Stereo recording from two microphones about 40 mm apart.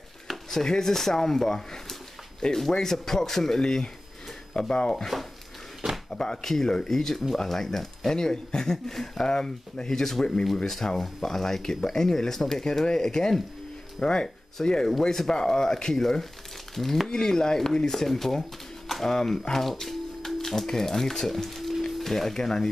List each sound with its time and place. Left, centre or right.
0.5 s speech: centre
6.0 s speech: centre